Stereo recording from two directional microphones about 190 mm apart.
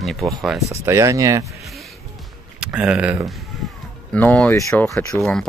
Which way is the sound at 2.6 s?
5° right (ahead or behind).